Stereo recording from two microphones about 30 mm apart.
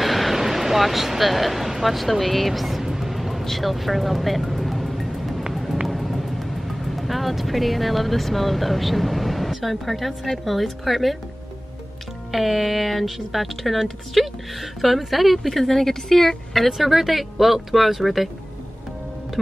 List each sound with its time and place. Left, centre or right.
0.0 s speech: centre
2.8 s music: centre
5.9 s vehicle: centre
9.7 s speech: centre
12.3 s speech: centre